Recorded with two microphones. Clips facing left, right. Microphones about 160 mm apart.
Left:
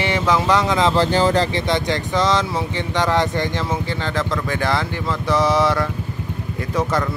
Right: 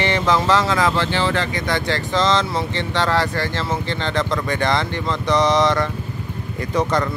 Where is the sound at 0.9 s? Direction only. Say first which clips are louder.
Left 4 dB; 40° left (ahead or behind).